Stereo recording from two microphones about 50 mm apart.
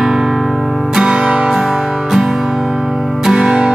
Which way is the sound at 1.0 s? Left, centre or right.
Centre.